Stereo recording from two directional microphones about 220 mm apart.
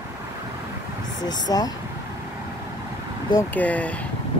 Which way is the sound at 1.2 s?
20° left (ahead or behind).